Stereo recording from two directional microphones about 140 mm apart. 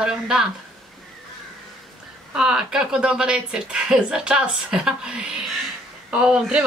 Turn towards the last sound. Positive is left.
turn(degrees=-5)  # may be behind; listen again after turning